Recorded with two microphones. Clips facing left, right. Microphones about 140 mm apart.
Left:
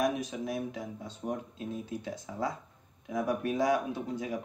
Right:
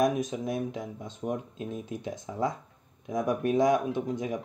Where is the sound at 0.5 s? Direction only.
20° right (ahead or behind).